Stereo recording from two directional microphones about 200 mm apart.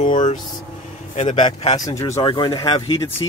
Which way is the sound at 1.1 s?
35° left (ahead or behind).